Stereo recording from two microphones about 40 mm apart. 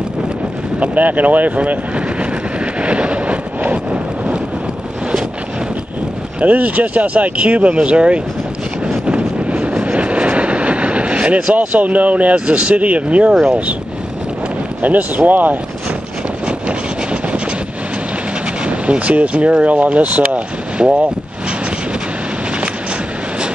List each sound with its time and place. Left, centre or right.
0.7 s vehicle: right
6.4 s speech: right
9.0 s vehicle: right
11.5 s speech: right
12.5 s speech: right
12.8 s speech: right
13.3 s speech: centre
14.8 s speech: right
16.4 s vehicle: right
18.7 s speech: right